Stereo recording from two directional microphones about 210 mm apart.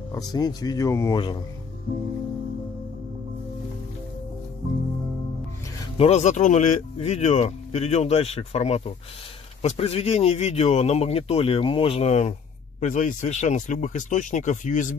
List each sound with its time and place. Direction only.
0.1 s speech: 20° left (ahead or behind)
5.9 s speech: 30° left (ahead or behind)